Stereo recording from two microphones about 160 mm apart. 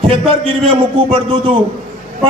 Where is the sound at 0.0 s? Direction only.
35° right (ahead or behind).